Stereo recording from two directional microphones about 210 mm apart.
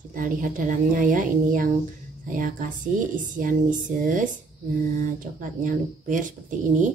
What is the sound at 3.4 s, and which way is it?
Speech, 40° right (ahead or behind).